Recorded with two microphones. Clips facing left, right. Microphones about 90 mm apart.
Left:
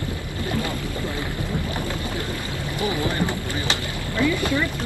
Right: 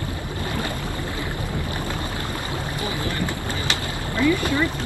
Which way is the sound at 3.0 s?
20° left (ahead or behind).